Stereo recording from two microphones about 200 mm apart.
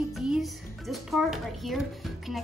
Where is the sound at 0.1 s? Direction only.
Centre (ahead or behind).